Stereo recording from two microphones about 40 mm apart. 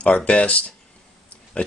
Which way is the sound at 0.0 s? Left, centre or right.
Left.